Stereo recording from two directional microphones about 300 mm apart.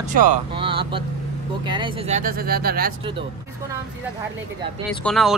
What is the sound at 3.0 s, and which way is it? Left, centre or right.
Speech, centre.